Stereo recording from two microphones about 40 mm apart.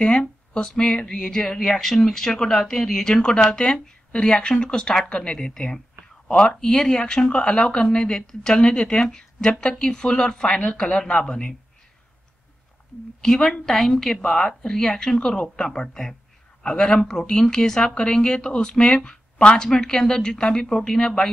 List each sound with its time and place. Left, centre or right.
0.0 s speech: left
13.2 s speech: centre